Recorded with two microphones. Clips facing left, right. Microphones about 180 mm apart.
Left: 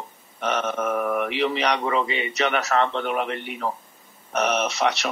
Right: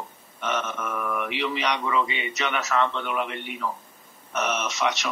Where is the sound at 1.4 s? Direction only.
35° left (ahead or behind).